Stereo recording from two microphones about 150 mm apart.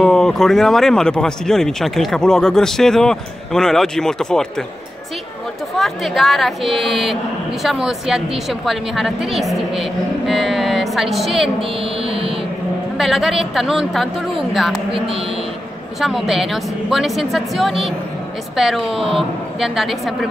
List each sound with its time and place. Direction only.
0.0 s speech: 5° left (ahead or behind)
5.8 s speech: centre (ahead or behind)
12.0 s music: 40° right (ahead or behind)
12.9 s speech: centre (ahead or behind)
14.9 s speech: 35° right (ahead or behind)
16.0 s speech: centre (ahead or behind)